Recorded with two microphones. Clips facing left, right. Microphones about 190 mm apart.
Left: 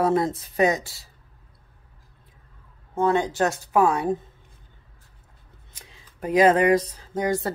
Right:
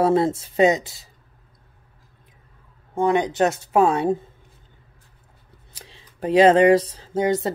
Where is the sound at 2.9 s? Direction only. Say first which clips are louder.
Right 2 dB; 15° right (ahead or behind).